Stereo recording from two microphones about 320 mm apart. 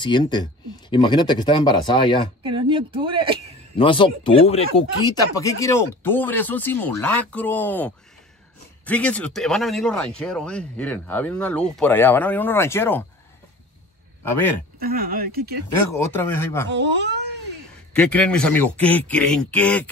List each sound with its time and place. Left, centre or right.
0.0 s speech: centre
2.4 s speech: centre
3.7 s speech: centre
14.8 s speech: right
16.0 s speech: centre
16.6 s speech: right
17.9 s speech: centre